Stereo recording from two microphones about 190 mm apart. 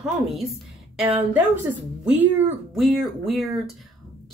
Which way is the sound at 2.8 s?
Centre (ahead or behind).